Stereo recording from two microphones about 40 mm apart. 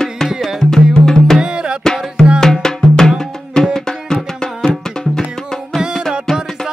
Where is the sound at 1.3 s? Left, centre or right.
Right.